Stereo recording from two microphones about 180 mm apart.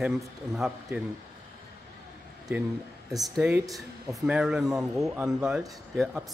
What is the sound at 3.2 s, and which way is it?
Speech, 5° right (ahead or behind).